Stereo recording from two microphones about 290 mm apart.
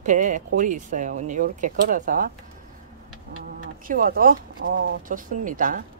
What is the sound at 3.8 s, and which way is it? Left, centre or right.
Speech, right.